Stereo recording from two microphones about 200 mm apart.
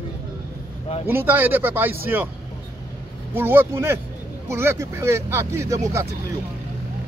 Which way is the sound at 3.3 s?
10° right (ahead or behind).